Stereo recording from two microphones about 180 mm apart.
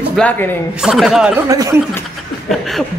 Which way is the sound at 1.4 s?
20° right (ahead or behind).